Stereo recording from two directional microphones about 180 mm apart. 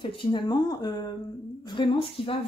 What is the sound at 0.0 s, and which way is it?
Speech, 25° left (ahead or behind).